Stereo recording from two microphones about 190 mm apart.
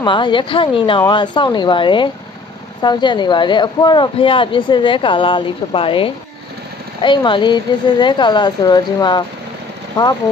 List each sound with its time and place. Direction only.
0.0 s speech: 25° left (ahead or behind)